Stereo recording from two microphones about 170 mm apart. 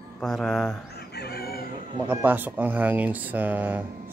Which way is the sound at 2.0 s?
10° right (ahead or behind).